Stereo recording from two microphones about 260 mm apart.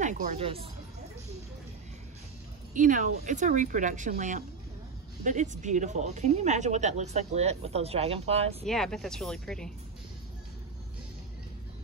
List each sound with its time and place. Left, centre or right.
0.0 s speech: right
2.7 s speech: right
8.6 s speech: centre